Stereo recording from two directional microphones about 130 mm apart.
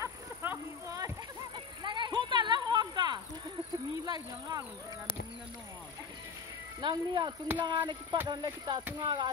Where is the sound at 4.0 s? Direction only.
30° right (ahead or behind).